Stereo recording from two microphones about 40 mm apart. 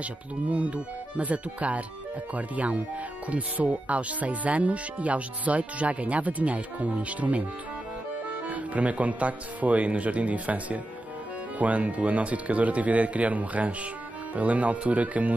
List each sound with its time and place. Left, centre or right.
0.5 s speech: right
8.5 s speech: right